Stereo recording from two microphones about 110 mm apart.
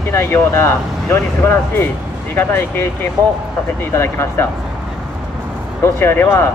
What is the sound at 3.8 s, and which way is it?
Speech, 20° left (ahead or behind).